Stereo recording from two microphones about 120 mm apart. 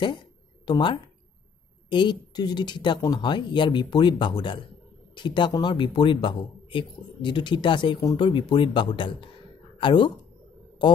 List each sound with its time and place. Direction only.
0.7 s speech: 40° left (ahead or behind)